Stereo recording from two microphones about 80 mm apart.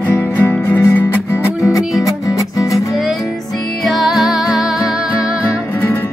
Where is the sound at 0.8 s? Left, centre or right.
Left.